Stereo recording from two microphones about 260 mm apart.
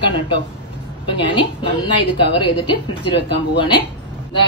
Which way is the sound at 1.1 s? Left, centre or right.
Centre.